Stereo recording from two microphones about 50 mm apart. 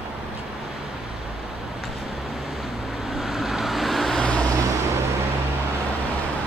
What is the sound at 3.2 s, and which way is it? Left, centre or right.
Vehicle, centre.